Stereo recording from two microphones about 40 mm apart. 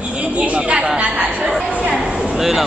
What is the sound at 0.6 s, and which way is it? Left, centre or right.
Speech, right.